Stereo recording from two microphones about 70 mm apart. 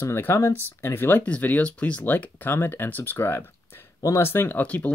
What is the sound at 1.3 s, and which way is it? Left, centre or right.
Speech, left.